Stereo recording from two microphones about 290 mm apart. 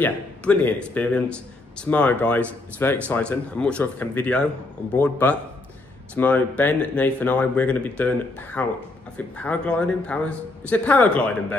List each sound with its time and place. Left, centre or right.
0.0 s a man's voice: centre